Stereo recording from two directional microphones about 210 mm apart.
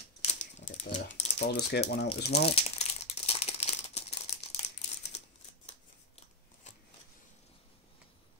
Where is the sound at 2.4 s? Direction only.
30° left (ahead or behind).